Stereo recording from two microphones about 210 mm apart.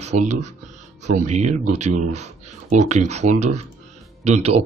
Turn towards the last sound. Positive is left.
turn(degrees=-30)  # may be behind; listen again after turning